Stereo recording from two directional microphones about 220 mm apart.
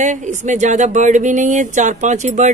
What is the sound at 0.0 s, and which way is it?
Speech, 35° right (ahead or behind).